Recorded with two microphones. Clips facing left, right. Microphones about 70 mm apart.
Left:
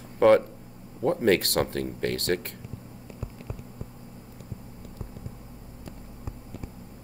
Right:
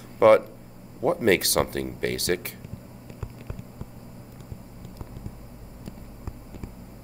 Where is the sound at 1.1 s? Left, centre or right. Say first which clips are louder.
Right 1 dB; centre.